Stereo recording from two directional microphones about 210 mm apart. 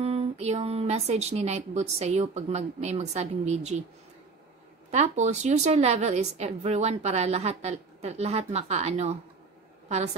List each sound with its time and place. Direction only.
0.0 s a woman's voice: 30° right (ahead or behind)
4.9 s a woman's voice: 35° right (ahead or behind)